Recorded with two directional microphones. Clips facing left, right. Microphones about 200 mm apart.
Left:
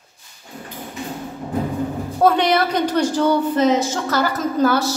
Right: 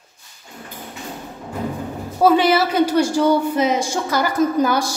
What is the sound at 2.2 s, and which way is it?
A woman's voice, 5° right (ahead or behind).